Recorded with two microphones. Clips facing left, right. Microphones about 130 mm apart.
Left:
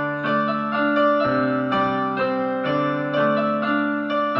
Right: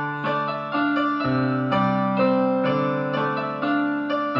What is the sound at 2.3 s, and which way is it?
Music, 20° right (ahead or behind).